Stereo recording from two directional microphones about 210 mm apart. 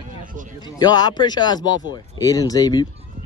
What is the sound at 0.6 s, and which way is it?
Speech, 20° left (ahead or behind).